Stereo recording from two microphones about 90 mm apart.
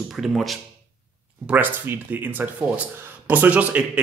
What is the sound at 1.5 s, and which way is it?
A man's voice, 20° right (ahead or behind).